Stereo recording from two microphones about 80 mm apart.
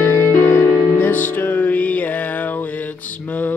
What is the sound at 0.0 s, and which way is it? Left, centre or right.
Music, left.